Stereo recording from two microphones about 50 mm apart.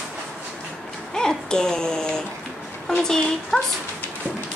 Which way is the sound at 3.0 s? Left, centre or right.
Centre.